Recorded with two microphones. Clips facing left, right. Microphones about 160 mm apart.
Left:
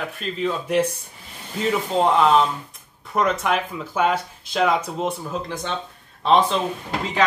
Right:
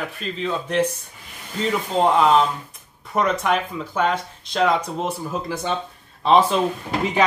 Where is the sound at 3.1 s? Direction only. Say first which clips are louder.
Right 1 dB; centre (ahead or behind).